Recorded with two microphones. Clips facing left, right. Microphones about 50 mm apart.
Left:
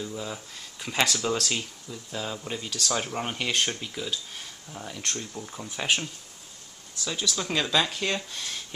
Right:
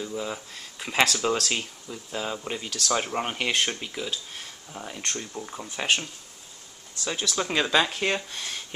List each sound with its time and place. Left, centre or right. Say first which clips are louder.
0.0 s speech: right 3 dB; centre
3.0 s speech: right 2 dB; centre
7.1 s speech: right 2 dB; centre